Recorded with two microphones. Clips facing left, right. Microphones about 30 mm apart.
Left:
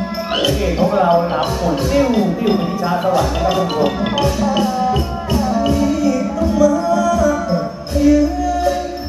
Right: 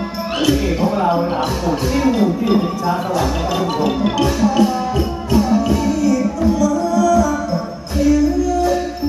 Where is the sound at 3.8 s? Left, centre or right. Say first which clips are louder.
Even; centre.